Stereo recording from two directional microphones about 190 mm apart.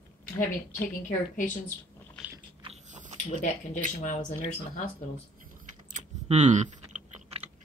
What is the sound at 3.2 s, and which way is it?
Speech, 35° left (ahead or behind).